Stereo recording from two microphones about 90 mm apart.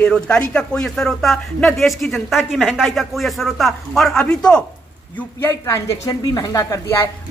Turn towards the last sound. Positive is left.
turn(degrees=40)  # may be behind; listen again after turning